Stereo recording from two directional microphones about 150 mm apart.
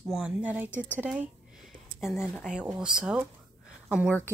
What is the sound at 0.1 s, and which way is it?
A woman's voice, 5° right (ahead or behind).